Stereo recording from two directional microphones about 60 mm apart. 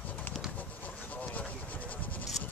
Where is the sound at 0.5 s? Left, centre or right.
Left.